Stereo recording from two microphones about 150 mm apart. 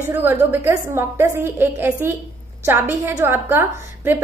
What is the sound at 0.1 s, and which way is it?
A woman's voice, 15° right (ahead or behind).